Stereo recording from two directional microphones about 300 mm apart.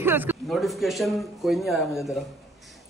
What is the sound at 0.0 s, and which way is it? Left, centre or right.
A man's voice, centre.